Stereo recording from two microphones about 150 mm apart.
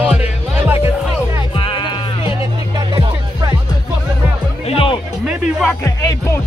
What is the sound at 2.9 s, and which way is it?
Music, 25° right (ahead or behind).